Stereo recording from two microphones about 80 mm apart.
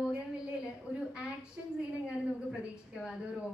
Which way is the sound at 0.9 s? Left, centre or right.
Centre.